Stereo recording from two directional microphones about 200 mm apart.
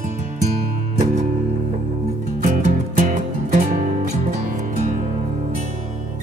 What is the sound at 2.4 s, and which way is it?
Music, 40° right (ahead or behind).